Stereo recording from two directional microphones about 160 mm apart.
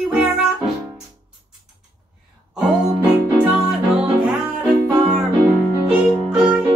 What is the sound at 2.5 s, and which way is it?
Music, centre (ahead or behind).